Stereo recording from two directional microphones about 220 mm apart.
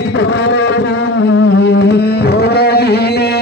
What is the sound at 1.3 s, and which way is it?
Music, 55° left (ahead or behind).